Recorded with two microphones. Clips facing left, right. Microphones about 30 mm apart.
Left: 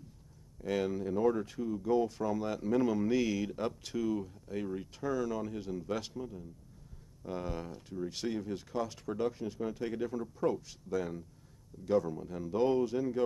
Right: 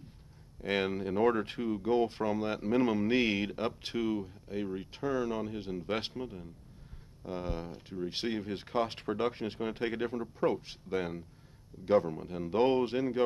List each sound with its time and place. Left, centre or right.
0.6 s speech: right
4.2 s speech: right
7.2 s speech: right